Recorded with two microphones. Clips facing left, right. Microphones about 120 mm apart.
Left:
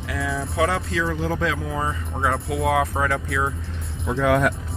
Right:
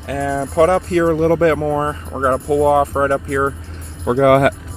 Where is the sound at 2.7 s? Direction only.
30° right (ahead or behind).